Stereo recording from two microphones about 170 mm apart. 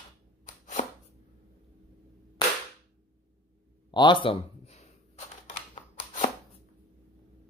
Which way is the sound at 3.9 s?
30° left (ahead or behind).